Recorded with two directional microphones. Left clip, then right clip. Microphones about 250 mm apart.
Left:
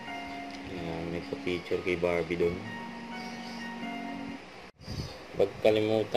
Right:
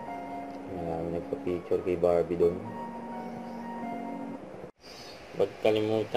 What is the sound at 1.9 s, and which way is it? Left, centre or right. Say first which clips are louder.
Speech: right 4 dB; left.